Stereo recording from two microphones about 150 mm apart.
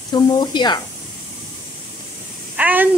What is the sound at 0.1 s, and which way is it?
Speech, 30° left (ahead or behind).